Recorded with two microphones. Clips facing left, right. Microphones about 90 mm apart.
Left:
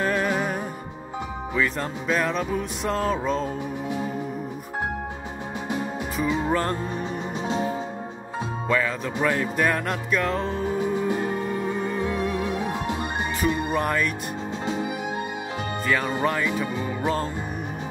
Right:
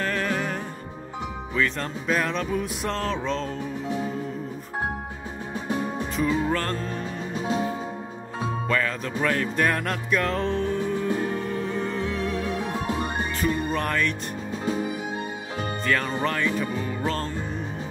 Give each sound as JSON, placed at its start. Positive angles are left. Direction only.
{"t": 0.0, "sound": "music", "side_deg": 15}
{"t": 5.7, "sound": "music", "side_deg": 15}
{"t": 7.4, "sound": "music", "side_deg": 30}
{"t": 8.6, "sound": "music", "side_deg": 5}
{"t": 15.9, "sound": "music", "side_deg": 10}